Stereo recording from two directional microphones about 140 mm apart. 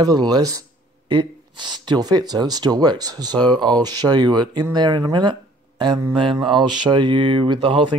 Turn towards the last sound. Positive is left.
turn(degrees=-35)  # may be behind; listen again after turning